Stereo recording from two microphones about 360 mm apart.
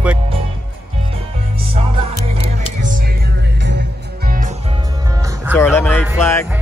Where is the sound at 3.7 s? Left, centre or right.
Right.